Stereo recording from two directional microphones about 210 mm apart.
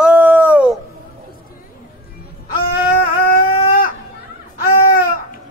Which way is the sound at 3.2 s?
40° left (ahead or behind).